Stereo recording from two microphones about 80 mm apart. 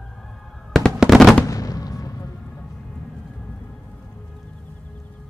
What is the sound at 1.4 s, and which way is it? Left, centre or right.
Basketball bounce, left.